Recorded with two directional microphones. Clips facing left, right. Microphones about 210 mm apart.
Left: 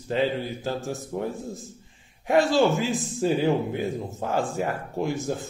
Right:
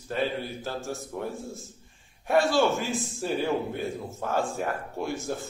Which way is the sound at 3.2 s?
15° left (ahead or behind).